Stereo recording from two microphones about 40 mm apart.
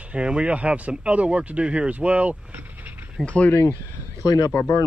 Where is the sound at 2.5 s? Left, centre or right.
Right.